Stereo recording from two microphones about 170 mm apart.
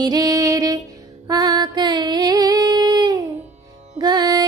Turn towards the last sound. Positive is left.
turn(degrees=-25)  # may be behind; listen again after turning